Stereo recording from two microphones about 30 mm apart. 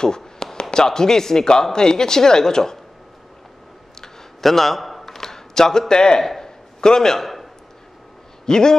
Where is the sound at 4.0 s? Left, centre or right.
Centre.